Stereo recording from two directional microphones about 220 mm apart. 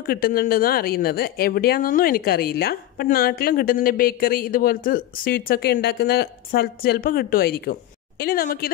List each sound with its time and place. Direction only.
0.0 s speech: 45° left (ahead or behind)